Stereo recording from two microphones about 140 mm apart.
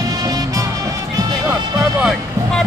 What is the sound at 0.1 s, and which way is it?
Music, 25° right (ahead or behind).